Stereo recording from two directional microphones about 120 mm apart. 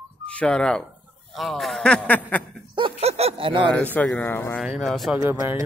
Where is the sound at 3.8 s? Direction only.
15° left (ahead or behind).